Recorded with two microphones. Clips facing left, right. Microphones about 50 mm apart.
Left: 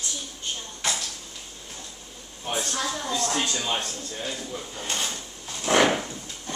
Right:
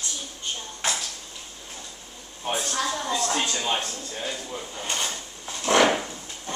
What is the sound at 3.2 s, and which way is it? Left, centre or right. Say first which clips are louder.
Speech: right 1 dB; centre.